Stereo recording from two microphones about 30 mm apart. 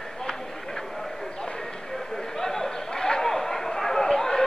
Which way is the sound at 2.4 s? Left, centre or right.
Centre.